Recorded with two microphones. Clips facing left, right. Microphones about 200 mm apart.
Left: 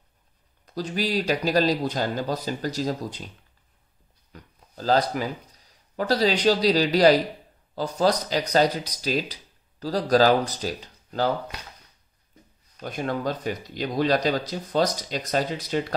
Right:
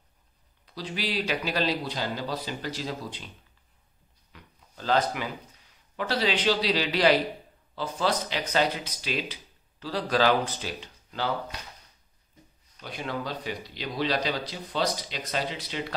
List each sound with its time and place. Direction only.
0.7 s speech: 45° left (ahead or behind)
4.3 s a sound: 40° left (ahead or behind)
5.1 s speech: 40° left (ahead or behind)
12.8 s speech: 45° left (ahead or behind)